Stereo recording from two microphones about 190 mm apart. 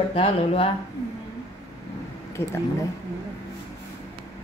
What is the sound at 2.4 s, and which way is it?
Speech, 30° left (ahead or behind).